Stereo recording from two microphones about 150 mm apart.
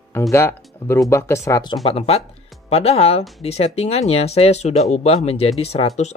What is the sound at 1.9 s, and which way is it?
Speech, 40° left (ahead or behind).